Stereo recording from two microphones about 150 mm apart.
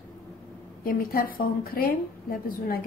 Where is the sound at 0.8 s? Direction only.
75° left (ahead or behind).